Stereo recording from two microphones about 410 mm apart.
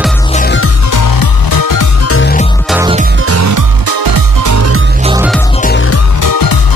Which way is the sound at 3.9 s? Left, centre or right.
Right.